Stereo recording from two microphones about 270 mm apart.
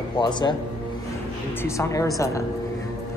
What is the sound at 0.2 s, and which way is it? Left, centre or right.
Speech, centre.